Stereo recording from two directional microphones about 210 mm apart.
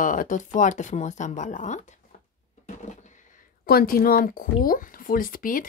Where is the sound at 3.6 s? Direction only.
45° left (ahead or behind).